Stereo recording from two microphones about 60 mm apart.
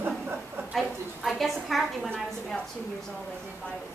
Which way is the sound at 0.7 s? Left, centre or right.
Centre.